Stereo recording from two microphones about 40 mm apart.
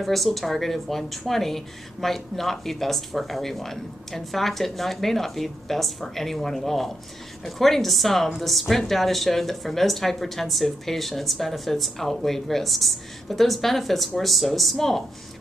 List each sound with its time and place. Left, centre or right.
0.0 s speech: centre